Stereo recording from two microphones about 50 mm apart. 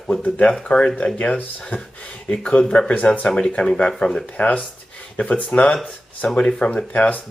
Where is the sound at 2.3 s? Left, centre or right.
Centre.